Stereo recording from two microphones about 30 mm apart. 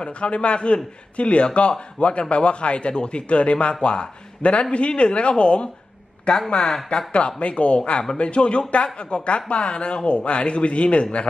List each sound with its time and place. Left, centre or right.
0.0 s speech: left